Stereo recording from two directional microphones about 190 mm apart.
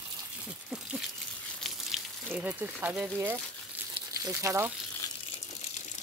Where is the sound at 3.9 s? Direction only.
20° right (ahead or behind).